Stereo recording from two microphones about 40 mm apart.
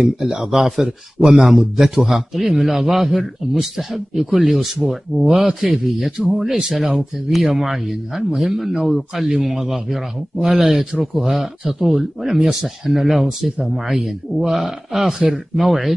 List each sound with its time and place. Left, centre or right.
0.0 s a man's voice: centre